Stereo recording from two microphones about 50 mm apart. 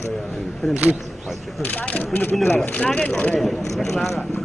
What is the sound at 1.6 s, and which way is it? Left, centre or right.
Speech, left.